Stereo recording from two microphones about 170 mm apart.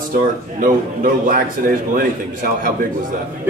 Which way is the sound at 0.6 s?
55° right (ahead or behind).